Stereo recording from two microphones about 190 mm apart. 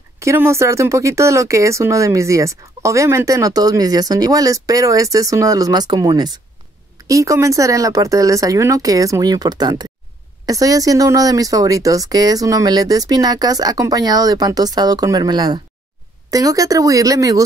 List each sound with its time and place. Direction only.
0.2 s speech: 15° right (ahead or behind)